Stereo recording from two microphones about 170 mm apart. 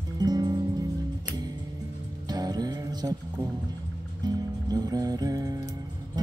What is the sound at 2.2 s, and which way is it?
Music, 25° right (ahead or behind).